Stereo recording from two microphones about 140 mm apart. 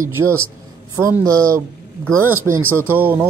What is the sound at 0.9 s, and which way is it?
Speech, 25° right (ahead or behind).